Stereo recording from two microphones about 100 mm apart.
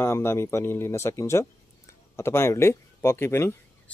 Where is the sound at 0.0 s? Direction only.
25° left (ahead or behind).